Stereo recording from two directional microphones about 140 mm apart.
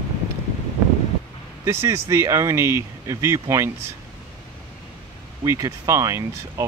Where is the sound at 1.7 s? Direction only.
20° right (ahead or behind).